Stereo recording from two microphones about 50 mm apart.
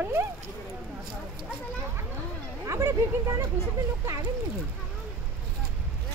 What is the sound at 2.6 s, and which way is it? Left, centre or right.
Speech, right.